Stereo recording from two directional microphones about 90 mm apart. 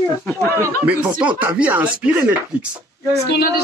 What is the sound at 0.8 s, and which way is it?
Speech, 15° right (ahead or behind).